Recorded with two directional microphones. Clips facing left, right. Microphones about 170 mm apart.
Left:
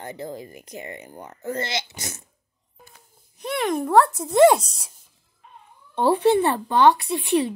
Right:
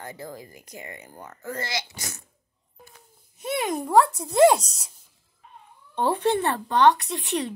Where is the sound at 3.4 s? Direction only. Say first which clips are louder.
Left 3 dB; centre (ahead or behind).